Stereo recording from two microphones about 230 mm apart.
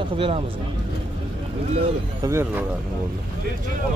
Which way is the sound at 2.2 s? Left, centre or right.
Centre.